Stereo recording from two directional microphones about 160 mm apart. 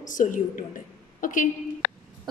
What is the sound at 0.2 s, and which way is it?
A woman's voice, 50° left (ahead or behind).